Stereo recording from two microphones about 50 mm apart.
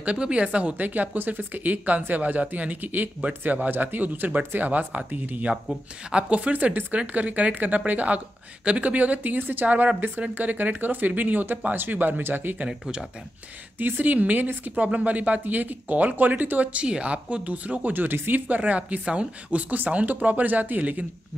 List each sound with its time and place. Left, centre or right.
0.0 s a woman's voice: right
6.0 s a woman's voice: right
12.6 s speech: centre
13.7 s a woman's voice: right
16.8 s speech: right